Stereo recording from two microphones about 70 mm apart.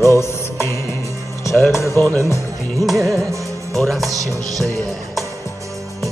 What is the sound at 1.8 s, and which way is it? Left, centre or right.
Music, left.